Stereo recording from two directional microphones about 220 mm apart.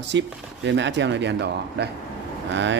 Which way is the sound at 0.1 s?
55° right (ahead or behind).